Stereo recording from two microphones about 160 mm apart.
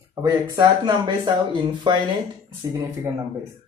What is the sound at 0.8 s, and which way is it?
Speech, 30° right (ahead or behind).